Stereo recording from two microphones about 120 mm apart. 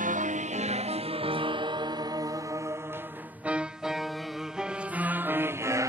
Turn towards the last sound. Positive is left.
turn(degrees=-20)  # may be behind; listen again after turning